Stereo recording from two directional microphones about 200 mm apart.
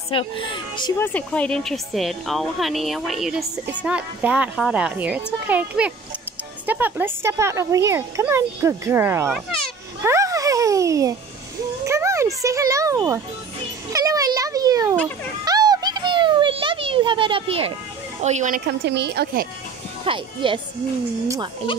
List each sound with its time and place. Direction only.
0.1 s a child's voice: 25° left (ahead or behind)
0.9 s speech: 10° left (ahead or behind); by 9.3 s 15° right (ahead or behind)
10.0 s a sound: 15° right (ahead or behind)
18.2 s speech: 35° right (ahead or behind)
18.7 s a woman's voice: 55° right (ahead or behind)
20.1 s speech: 25° right (ahead or behind)